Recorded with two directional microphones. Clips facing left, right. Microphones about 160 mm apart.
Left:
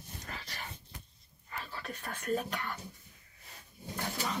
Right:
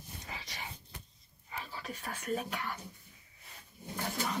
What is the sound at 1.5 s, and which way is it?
Speech, 10° right (ahead or behind).